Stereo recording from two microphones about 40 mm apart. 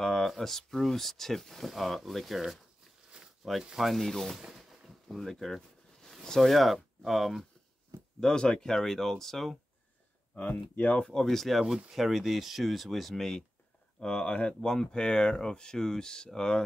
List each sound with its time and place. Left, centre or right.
0.4 s speech: centre
3.2 s a sound: centre
3.8 s speech: centre
4.6 s a sound: centre
5.1 s speech: centre
8.2 s speech: centre
10.5 s speech: left
11.0 s speech: centre
11.2 s speech: centre
11.6 s speech: centre
13.9 s speech: left